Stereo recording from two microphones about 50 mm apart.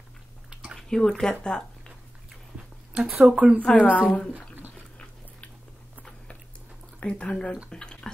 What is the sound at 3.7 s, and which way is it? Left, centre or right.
Speech, left.